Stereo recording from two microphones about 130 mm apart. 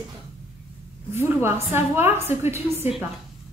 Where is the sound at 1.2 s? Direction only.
20° right (ahead or behind).